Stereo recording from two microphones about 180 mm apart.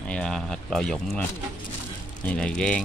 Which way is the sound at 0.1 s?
5° left (ahead or behind).